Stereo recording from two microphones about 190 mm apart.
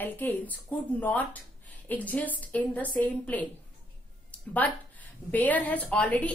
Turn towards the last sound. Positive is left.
turn(degrees=5)  # may be behind; listen again after turning